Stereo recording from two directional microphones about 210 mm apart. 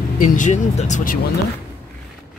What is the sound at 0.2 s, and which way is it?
Speech, 35° left (ahead or behind).